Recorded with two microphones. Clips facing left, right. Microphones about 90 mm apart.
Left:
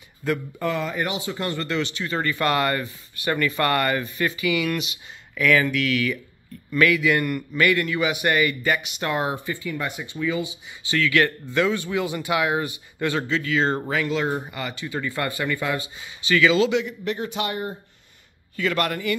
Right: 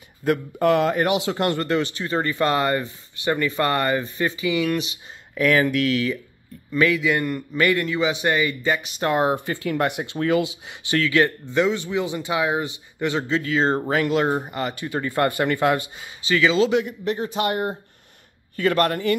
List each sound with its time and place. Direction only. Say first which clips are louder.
0.2 s speech: right 5 dB; 50° right (ahead or behind)
1.3 s speech: right 5 dB; 50° right (ahead or behind)
6.7 s speech: even; 20° right (ahead or behind)
8.8 s speech: right 4 dB; 35° right (ahead or behind)
9.3 s speech: right 5 dB; 70° right (ahead or behind)
11.0 s speech: right 1 dB; 30° right (ahead or behind)
13.3 s speech: right 3 dB; 35° right (ahead or behind); by 15.8 s 55° right (ahead or behind)
16.3 s speech: even; 30° right (ahead or behind)
17.5 s speech: right 5 dB; 55° right (ahead or behind)
18.6 s speech: right 4 dB; 45° right (ahead or behind)